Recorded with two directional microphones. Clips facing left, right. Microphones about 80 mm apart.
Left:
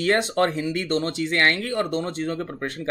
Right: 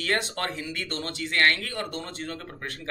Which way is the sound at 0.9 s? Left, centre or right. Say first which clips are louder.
Left 12 dB; left.